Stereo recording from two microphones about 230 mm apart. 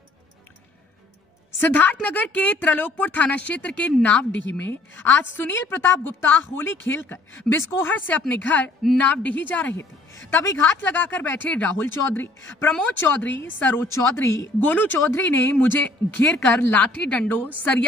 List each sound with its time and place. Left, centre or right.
1.6 s a woman's voice: centre
4.3 s a woman's voice: left
4.6 s a woman's voice: centre